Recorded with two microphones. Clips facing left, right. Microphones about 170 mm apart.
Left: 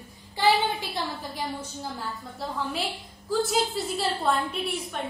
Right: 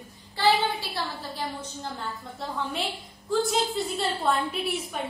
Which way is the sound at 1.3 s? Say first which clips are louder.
Left 1 dB; 10° left (ahead or behind).